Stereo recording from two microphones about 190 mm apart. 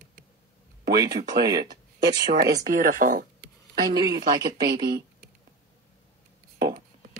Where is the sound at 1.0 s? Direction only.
20° right (ahead or behind).